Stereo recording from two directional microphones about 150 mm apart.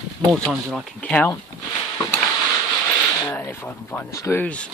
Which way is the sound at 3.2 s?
15° left (ahead or behind).